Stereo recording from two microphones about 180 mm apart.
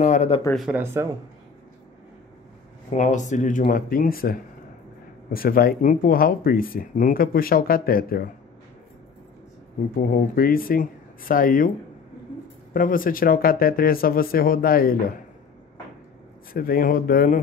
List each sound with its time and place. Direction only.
0.0 s speech: 40° left (ahead or behind)
0.6 s speech: 10° right (ahead or behind)
2.9 s speech: 45° left (ahead or behind)
9.9 s speech: 55° left (ahead or behind)
12.7 s speech: 50° left (ahead or behind)
16.5 s speech: 55° left (ahead or behind)